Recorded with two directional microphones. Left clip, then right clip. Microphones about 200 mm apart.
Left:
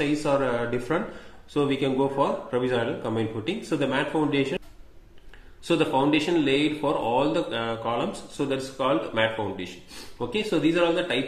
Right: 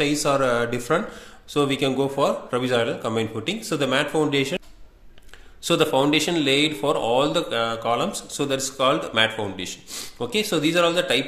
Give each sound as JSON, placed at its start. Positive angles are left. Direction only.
{"t": 0.0, "sound": "a man's voice", "side_deg": -35}